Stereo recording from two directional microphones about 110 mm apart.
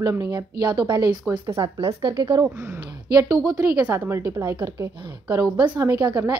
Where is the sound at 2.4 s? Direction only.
20° right (ahead or behind).